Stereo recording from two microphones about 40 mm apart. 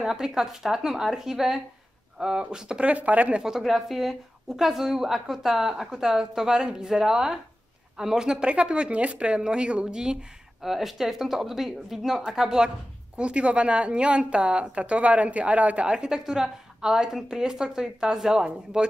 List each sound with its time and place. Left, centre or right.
0.0 s a woman's voice: centre
2.8 s a woman's voice: right
3.4 s a woman's voice: centre
8.5 s speech: right
10.6 s a woman's voice: centre
13.2 s a woman's voice: right